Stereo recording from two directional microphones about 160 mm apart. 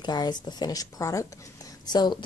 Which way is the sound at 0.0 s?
25° left (ahead or behind).